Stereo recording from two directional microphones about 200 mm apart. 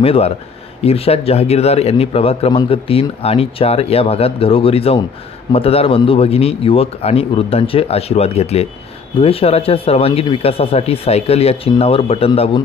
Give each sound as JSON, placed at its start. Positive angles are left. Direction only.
{"t": 0.0, "sound": "speech", "side_deg": 30}